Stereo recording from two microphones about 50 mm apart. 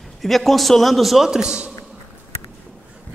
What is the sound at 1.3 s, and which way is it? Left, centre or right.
Speech, centre.